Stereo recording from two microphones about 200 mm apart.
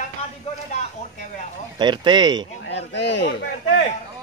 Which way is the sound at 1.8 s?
20° right (ahead or behind).